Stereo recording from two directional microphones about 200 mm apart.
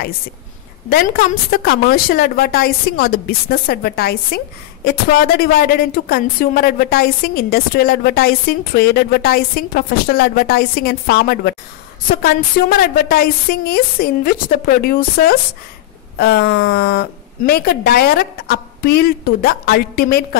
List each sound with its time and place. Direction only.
0.8 s a woman's voice: 45° left (ahead or behind)